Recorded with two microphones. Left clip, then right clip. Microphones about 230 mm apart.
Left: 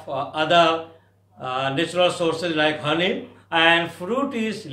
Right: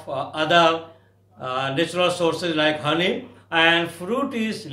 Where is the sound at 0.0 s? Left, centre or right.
Centre.